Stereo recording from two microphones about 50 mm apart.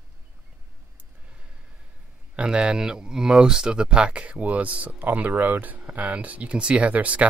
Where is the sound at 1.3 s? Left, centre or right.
Right.